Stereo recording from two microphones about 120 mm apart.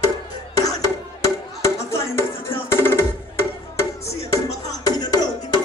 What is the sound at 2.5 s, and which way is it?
Music, 20° left (ahead or behind).